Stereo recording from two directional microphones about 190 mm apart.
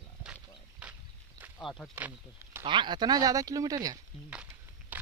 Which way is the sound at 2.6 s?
25° right (ahead or behind).